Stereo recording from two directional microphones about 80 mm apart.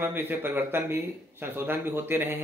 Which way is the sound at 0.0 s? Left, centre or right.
Right.